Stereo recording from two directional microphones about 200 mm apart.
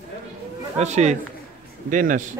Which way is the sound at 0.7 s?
35° right (ahead or behind).